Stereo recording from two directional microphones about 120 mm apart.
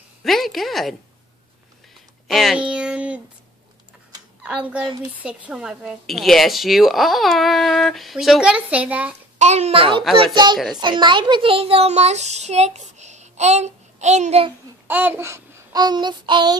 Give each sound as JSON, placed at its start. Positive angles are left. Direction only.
{"t": 0.2, "sound": "a woman's voice", "side_deg": 0}
{"t": 2.2, "sound": "speech", "side_deg": 0}
{"t": 4.4, "sound": "a child's voice", "side_deg": -10}
{"t": 9.4, "sound": "a child's voice", "side_deg": -65}
{"t": 10.1, "sound": "child singing", "side_deg": -40}
{"t": 10.8, "sound": "a child's voice", "side_deg": -40}
{"t": 14.9, "sound": "babbling", "side_deg": -15}
{"t": 15.8, "sound": "child singing", "side_deg": -35}